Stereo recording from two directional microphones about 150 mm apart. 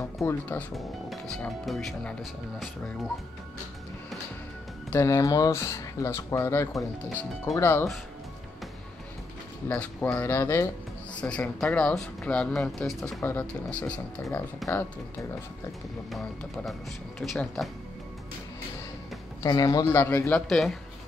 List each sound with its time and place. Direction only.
0.2 s speech: 15° left (ahead or behind)
1.3 s speech: 5° left (ahead or behind)
4.9 s speech: 20° left (ahead or behind)
9.7 s speech: 10° left (ahead or behind)
16.1 s speech: centre (ahead or behind)
19.4 s speech: 25° left (ahead or behind); by 20.7 s centre (ahead or behind)